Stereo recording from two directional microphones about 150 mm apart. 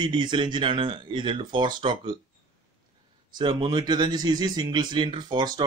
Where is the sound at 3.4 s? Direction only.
30° right (ahead or behind).